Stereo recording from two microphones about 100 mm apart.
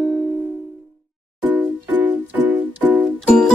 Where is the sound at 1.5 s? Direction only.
15° right (ahead or behind).